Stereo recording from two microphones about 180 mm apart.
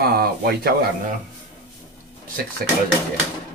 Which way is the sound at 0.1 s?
60° right (ahead or behind).